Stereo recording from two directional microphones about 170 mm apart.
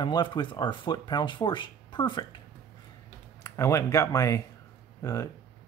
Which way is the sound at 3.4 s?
15° left (ahead or behind).